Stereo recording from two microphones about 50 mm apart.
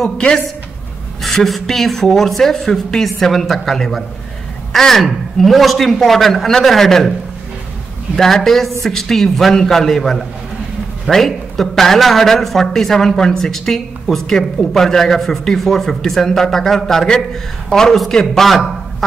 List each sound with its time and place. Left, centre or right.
1.2 s speech: centre
8.2 s a man's voice: centre